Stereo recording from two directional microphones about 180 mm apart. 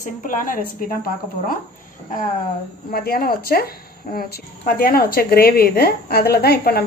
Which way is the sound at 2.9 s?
55° left (ahead or behind).